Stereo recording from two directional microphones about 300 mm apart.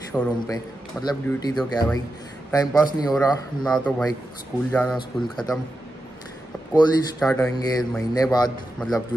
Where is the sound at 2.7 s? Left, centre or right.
Centre.